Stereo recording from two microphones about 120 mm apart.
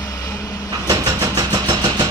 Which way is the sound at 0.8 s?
35° right (ahead or behind).